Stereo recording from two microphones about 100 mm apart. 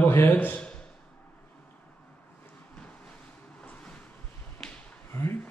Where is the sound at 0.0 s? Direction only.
25° left (ahead or behind).